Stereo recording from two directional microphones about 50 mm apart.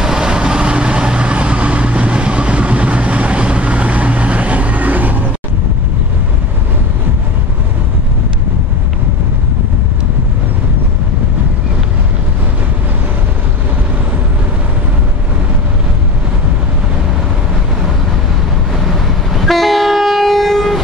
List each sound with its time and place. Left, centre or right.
0.0 s vehicle: centre; by 5.3 s right
18.9 s train: centre